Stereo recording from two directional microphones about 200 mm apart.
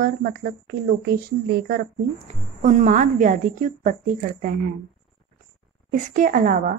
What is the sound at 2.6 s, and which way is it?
A woman's voice, 40° right (ahead or behind).